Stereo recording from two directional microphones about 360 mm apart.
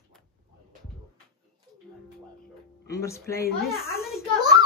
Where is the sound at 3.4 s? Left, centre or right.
Left.